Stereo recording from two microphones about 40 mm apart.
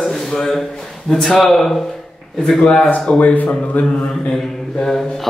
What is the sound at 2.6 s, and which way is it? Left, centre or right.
Mantra, left.